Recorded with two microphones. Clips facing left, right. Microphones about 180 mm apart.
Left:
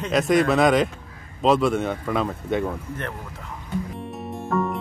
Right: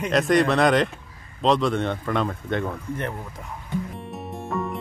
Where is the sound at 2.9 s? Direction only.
15° right (ahead or behind).